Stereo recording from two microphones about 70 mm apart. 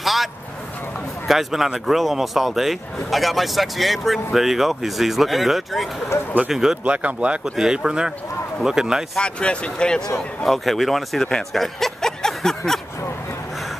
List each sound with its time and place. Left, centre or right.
0.0 s vehicle: centre
1.2 s speech: centre
6.8 s speech: centre
7.4 s speech: centre
9.1 s speech: centre